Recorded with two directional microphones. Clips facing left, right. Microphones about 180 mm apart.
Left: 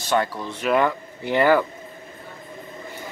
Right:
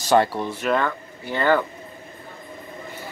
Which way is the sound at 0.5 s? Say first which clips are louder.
Even; centre (ahead or behind).